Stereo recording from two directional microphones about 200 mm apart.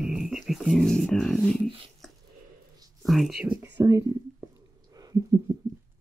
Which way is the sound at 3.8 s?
15° right (ahead or behind).